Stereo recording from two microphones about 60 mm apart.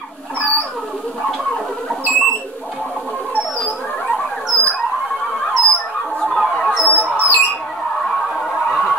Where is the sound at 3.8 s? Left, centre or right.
Centre.